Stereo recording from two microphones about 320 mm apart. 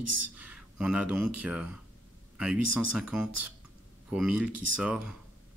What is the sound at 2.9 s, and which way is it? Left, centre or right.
Speech, centre.